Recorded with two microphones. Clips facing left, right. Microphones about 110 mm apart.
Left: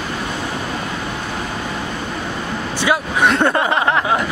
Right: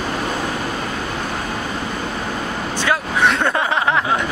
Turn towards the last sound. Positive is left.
turn(degrees=0)  # may be behind; listen again after turning